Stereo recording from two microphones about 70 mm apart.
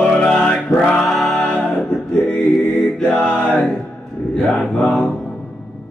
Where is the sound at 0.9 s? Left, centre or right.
Centre.